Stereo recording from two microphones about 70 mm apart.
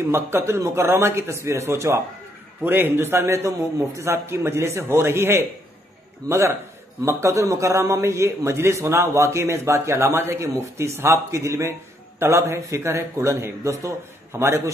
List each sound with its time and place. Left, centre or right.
0.1 s a man's voice: right
2.6 s a man's voice: right